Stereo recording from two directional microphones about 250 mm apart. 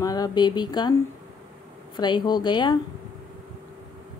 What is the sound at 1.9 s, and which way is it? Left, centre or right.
Speech, centre.